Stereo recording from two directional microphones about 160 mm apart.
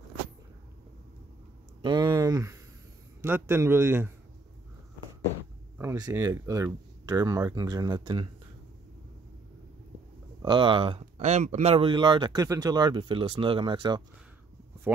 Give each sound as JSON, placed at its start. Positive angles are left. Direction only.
{"t": 1.8, "sound": "a sound", "side_deg": -30}
{"t": 3.2, "sound": "a man's voice", "side_deg": -15}
{"t": 5.8, "sound": "speech", "side_deg": -20}
{"t": 10.4, "sound": "speech", "side_deg": -30}